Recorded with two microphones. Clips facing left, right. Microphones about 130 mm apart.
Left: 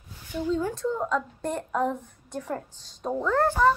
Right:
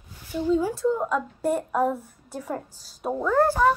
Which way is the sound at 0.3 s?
10° right (ahead or behind).